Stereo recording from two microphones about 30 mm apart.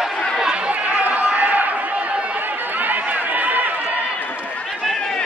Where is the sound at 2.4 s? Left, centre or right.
Right.